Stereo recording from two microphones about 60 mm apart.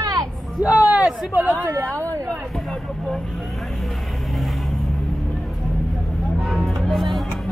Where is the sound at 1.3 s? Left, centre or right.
Right.